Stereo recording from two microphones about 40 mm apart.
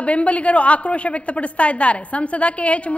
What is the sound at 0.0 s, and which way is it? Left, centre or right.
A woman's voice, left.